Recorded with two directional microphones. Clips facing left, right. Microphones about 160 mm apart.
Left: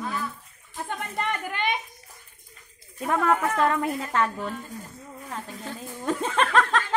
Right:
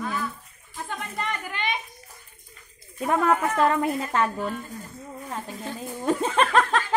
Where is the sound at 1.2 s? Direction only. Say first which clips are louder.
Left 3 dB; 55° left (ahead or behind).